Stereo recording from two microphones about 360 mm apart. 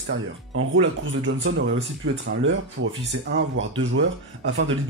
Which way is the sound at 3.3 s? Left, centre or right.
Right.